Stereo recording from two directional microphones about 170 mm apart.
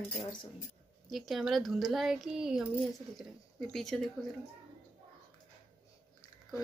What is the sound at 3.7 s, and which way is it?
Speech, centre (ahead or behind).